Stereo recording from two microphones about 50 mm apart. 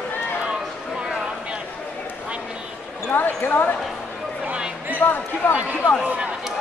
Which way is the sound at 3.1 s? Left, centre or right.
Left.